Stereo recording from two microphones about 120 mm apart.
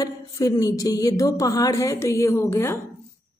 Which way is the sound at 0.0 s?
30° left (ahead or behind).